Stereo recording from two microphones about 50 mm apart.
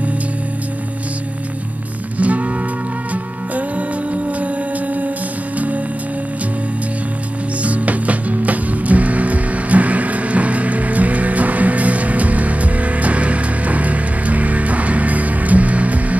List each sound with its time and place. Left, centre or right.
2.1 s music: right
7.6 s music: right